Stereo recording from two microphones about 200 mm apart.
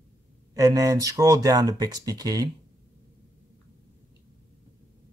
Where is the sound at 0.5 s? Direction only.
15° right (ahead or behind).